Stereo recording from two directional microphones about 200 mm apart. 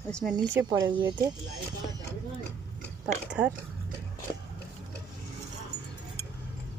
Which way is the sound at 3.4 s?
10° right (ahead or behind).